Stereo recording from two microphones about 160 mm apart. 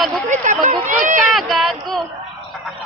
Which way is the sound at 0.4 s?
50° right (ahead or behind).